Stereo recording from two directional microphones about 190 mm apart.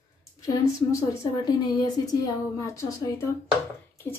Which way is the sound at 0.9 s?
20° left (ahead or behind).